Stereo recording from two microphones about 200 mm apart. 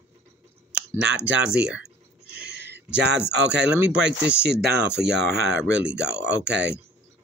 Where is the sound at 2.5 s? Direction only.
55° right (ahead or behind).